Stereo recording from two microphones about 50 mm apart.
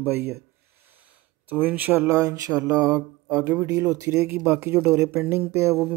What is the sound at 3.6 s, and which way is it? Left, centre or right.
Speech, right.